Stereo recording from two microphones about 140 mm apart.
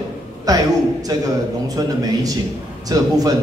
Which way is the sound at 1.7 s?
25° right (ahead or behind).